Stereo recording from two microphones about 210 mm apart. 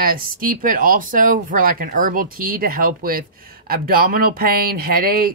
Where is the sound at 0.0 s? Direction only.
45° right (ahead or behind).